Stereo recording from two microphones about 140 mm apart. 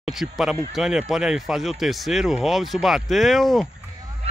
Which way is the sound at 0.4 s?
5° right (ahead or behind).